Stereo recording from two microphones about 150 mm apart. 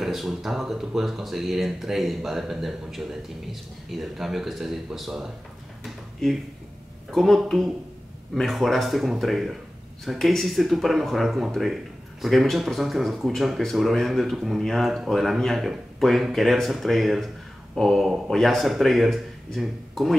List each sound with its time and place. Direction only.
0.0 s speech: centre (ahead or behind)
7.1 s speech: centre (ahead or behind)